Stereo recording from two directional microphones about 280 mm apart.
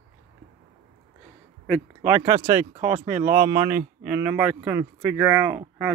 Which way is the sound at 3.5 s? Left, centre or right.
Centre.